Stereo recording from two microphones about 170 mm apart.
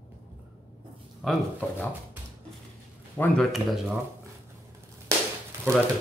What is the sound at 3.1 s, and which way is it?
Speech, centre (ahead or behind).